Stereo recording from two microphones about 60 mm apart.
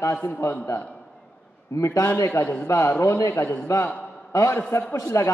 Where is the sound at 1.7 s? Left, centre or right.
Left.